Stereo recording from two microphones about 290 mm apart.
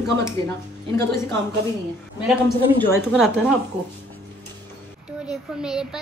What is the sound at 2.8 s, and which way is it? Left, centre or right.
Speech, centre.